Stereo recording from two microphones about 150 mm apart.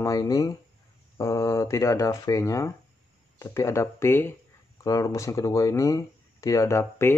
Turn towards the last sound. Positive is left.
turn(degrees=15)  # may be behind; listen again after turning